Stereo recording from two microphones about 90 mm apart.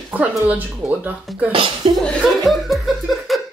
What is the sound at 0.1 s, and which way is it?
Speech, 20° right (ahead or behind).